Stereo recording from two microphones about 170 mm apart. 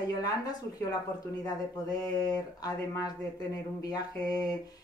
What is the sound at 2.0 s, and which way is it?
Speech, 20° left (ahead or behind).